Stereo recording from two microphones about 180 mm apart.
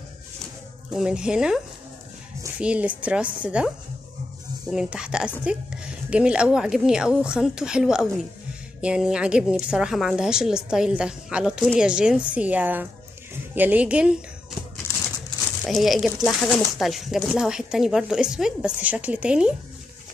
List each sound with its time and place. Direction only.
0.9 s speech: 5° right (ahead or behind)
2.6 s a woman's voice: 5° right (ahead or behind)
15.6 s speech: centre (ahead or behind)